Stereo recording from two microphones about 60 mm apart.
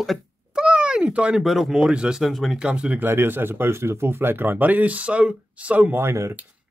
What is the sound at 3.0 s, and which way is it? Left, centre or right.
Speech, right.